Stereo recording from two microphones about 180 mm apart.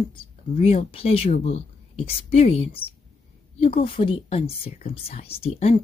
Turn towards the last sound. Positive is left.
turn(degrees=35)  # may be behind; listen again after turning